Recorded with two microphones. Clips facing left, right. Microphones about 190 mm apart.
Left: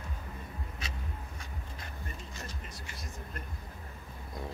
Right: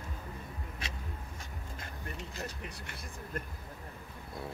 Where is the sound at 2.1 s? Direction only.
65° right (ahead or behind).